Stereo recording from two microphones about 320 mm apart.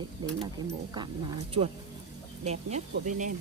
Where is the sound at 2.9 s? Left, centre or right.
Right.